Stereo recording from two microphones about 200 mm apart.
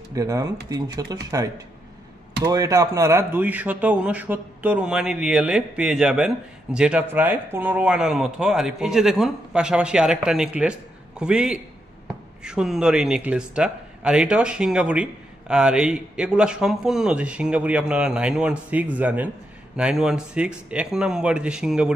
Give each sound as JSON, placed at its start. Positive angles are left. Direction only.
{"t": 0.1, "sound": "speech", "side_deg": -15}